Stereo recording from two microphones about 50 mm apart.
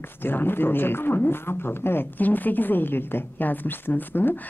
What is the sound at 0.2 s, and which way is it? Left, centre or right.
Speech, left.